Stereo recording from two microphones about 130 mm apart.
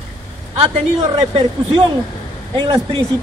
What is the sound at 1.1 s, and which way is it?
A man's voice, 45° right (ahead or behind).